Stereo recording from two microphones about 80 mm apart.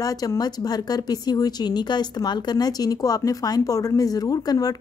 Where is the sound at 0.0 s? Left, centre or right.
Left.